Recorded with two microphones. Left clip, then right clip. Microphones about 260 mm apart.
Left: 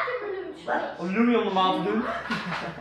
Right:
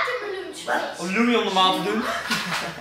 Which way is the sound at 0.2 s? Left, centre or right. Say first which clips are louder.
Right 2 dB; centre.